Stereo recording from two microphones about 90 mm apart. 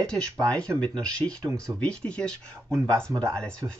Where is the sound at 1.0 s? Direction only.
10° left (ahead or behind).